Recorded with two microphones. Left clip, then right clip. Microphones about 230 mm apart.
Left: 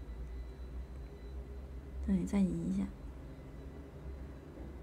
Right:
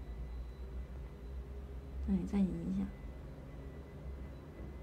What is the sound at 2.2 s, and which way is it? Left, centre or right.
Speech, centre.